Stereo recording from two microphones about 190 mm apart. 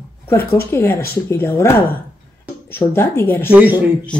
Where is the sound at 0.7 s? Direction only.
15° left (ahead or behind).